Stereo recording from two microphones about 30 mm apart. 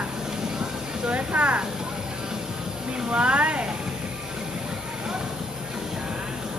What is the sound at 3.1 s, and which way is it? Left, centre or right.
Speech, right.